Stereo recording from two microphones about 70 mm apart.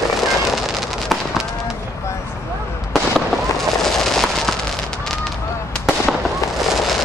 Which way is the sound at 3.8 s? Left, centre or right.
Centre.